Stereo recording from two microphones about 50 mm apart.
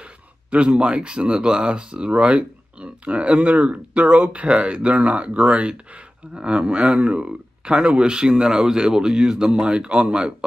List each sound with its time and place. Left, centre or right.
0.5 s speech: right